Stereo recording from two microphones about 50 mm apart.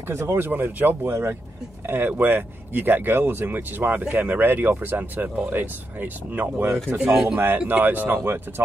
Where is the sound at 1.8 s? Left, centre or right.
Right.